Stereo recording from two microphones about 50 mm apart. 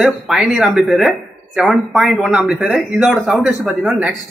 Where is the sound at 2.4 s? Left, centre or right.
Centre.